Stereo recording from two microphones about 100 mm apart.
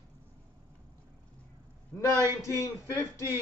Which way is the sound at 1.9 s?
20° left (ahead or behind).